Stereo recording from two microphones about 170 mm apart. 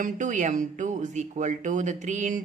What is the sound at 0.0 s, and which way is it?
Speech, 45° right (ahead or behind).